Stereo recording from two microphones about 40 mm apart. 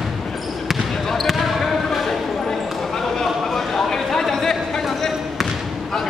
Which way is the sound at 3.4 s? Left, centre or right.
Centre.